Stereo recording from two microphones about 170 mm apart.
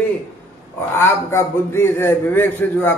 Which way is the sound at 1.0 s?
15° left (ahead or behind).